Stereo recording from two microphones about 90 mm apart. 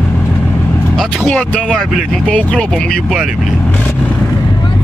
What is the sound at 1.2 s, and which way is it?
Speech, 20° left (ahead or behind).